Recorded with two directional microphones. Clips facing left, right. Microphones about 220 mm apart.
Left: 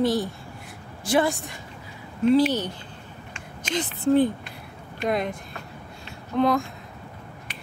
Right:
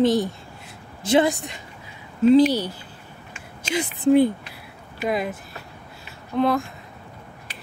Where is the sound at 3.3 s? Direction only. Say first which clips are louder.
Right 2 dB; 10° right (ahead or behind).